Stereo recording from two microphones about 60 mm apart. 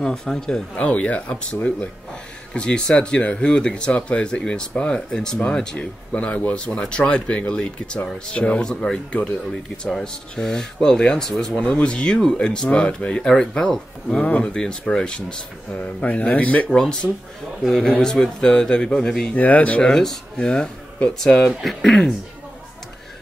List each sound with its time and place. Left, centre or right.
0.0 s speech: centre
0.7 s speech: left
6.1 s speech: left
16.7 s speech: centre
19.3 s speech: left
19.8 s speech: centre
21.5 s speech: centre
21.8 s speech: centre